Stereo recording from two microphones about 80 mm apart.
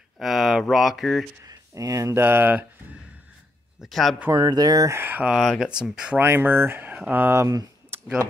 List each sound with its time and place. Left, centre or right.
0.2 s speech: centre
1.4 s speech: right
2.2 s speech: right
3.8 s speech: centre
4.4 s speech: right
4.9 s speech: right
5.3 s speech: centre
5.6 s speech: centre
6.1 s speech: right